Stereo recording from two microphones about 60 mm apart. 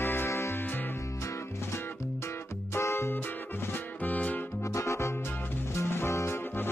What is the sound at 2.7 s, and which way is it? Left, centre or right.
Music, left.